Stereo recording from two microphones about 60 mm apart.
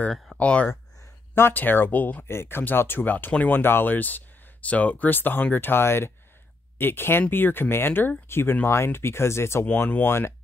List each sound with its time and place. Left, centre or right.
0.4 s speech: left
1.5 s speech: left
2.2 s speech: left
9.7 s speech: left